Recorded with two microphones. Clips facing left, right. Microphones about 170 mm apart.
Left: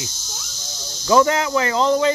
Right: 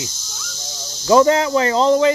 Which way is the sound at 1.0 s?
25° right (ahead or behind).